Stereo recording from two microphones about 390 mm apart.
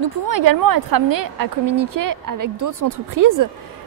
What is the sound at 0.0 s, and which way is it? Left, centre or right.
A woman's voice, right.